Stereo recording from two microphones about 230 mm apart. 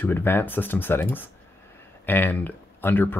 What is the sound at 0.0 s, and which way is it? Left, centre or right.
Speech, centre.